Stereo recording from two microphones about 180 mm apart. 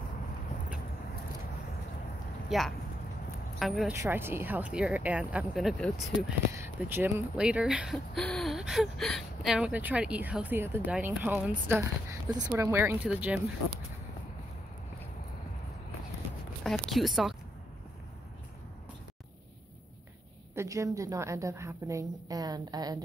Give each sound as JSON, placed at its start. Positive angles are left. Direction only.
{"t": 2.5, "sound": "a woman's voice", "side_deg": 0}
{"t": 4.0, "sound": "a woman's voice", "side_deg": -10}
{"t": 6.5, "sound": "a woman's voice", "side_deg": -15}
{"t": 16.6, "sound": "speech", "side_deg": 0}
{"t": 20.5, "sound": "a woman's voice", "side_deg": -15}